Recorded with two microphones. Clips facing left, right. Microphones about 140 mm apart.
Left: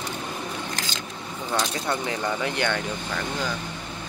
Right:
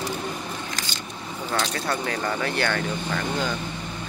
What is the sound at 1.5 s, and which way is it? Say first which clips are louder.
Speech: even; 15° left (ahead or behind).